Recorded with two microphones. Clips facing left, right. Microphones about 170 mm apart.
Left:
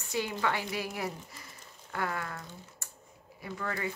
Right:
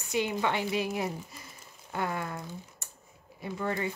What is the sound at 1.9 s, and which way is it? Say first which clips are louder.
Typing: right 2 dB; 20° right (ahead or behind).